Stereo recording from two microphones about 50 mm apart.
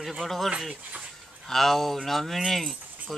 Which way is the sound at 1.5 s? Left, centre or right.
Centre.